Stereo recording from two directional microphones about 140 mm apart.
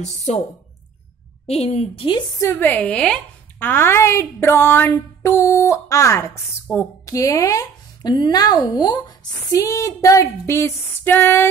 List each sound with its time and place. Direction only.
0.0 s a woman's voice: 50° left (ahead or behind)
1.5 s a woman's voice: 50° left (ahead or behind)
2.4 s a woman's voice: 10° left (ahead or behind)